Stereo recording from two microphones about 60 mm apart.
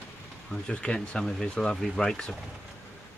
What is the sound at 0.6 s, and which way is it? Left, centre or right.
Speech, centre.